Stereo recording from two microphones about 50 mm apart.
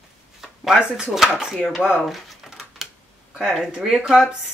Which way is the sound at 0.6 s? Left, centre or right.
Centre.